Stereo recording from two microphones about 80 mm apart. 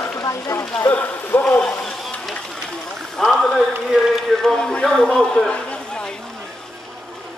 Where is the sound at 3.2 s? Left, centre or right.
Centre.